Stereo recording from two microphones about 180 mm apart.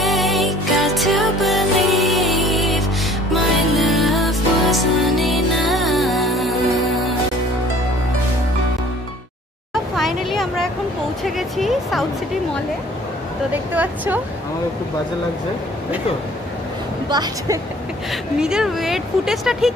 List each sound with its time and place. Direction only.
0.0 s music: centre (ahead or behind)
9.9 s a sound: centre (ahead or behind)
11.2 s music: centre (ahead or behind)
13.7 s a sound: 10° right (ahead or behind)
17.1 s a woman's voice: 25° right (ahead or behind)
18.4 s speech: 5° right (ahead or behind)